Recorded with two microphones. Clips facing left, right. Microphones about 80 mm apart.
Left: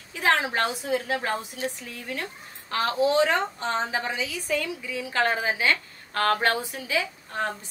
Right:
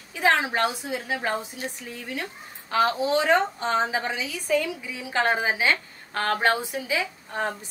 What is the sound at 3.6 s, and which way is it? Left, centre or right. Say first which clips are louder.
Speech: right 3 dB; right.